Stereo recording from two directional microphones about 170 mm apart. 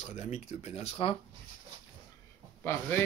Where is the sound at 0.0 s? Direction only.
40° left (ahead or behind).